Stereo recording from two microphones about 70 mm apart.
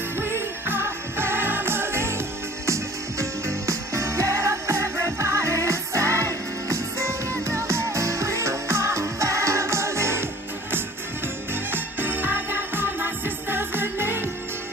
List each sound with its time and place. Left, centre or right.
0.2 s music: right
11.7 s music: right